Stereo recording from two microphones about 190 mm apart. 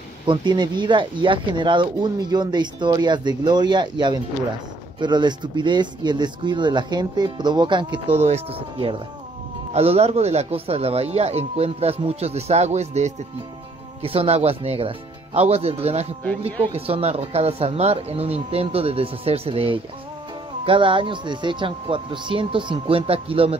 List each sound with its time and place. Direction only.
0.3 s a man's voice: 25° right (ahead or behind)